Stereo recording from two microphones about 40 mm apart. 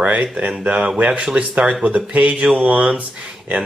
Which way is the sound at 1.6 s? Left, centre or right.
Right.